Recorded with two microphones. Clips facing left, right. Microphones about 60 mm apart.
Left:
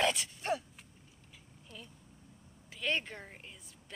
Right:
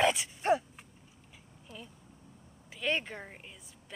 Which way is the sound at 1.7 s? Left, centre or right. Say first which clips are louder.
Right 3 dB; centre.